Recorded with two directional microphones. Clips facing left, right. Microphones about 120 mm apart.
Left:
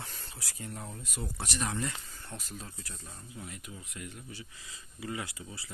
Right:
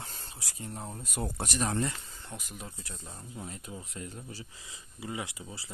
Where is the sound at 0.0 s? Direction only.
30° right (ahead or behind).